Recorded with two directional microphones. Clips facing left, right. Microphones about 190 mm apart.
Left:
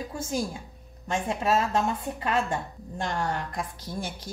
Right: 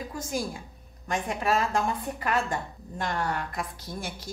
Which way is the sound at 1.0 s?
25° left (ahead or behind).